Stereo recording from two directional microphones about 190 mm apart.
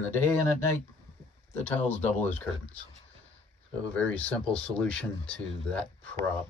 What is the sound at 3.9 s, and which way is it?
Speech, 5° left (ahead or behind).